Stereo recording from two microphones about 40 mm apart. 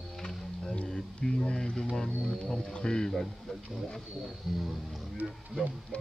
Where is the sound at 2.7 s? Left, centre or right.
Centre.